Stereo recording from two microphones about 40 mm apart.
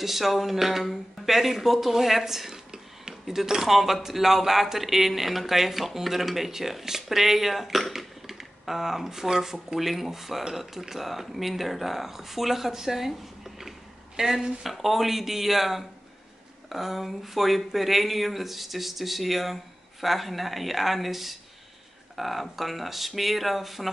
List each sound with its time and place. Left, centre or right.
0.0 s speech: centre
2.5 s a sound: centre
3.3 s speech: centre